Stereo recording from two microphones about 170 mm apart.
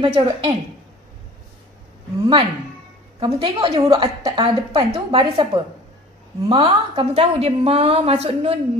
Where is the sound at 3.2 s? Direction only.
30° right (ahead or behind).